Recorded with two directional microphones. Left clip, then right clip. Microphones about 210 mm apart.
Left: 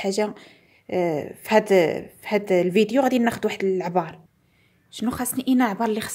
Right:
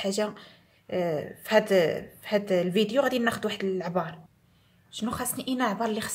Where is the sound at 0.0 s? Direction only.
30° left (ahead or behind).